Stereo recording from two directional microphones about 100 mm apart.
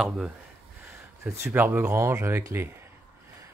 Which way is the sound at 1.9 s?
30° right (ahead or behind).